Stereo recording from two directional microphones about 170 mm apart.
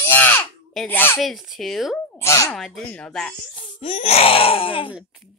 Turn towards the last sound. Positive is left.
turn(degrees=-5)  # may be behind; listen again after turning